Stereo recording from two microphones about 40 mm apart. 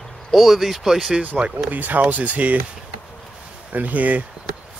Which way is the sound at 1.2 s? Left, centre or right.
Right.